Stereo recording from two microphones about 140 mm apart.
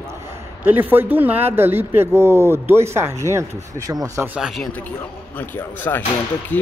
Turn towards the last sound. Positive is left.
turn(degrees=10)  # may be behind; listen again after turning